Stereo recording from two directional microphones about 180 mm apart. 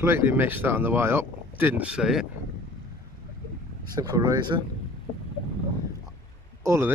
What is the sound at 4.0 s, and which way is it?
Speech, 20° right (ahead or behind).